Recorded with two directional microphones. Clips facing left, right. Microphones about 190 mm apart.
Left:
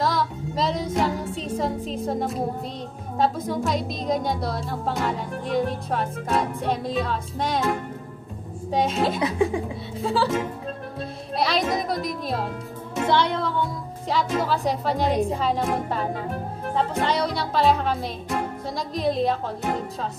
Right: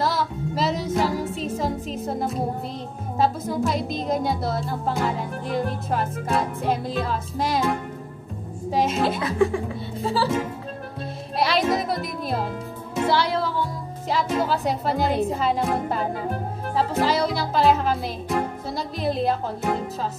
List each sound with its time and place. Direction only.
0.0 s music: 5° right (ahead or behind)
2.0 s speech: centre (ahead or behind)
9.2 s laughter: 20° left (ahead or behind)
10.0 s speech: centre (ahead or behind)
11.3 s music: centre (ahead or behind)
14.0 s speech: centre (ahead or behind)